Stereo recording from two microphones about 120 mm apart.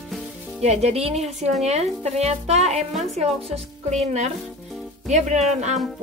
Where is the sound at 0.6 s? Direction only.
65° right (ahead or behind).